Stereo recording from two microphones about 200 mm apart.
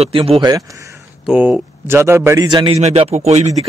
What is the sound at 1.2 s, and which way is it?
A man's voice, 5° right (ahead or behind).